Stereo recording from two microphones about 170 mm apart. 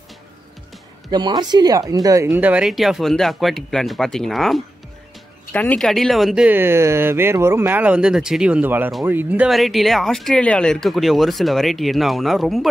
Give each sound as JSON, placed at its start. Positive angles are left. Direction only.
{"t": 1.1, "sound": "speech", "side_deg": -25}
{"t": 2.2, "sound": "speech", "side_deg": -10}